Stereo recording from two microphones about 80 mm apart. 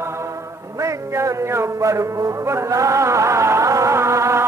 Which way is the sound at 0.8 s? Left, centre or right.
Right.